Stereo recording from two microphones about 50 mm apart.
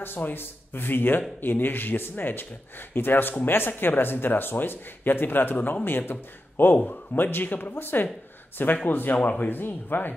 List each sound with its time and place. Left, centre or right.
0.0 s a man's voice: left
9.1 s speech: left
9.5 s speech: left